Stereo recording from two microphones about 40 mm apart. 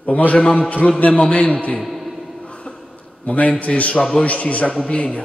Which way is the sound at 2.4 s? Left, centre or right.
Left.